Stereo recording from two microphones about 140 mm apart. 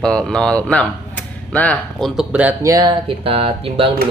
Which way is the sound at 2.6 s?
30° right (ahead or behind).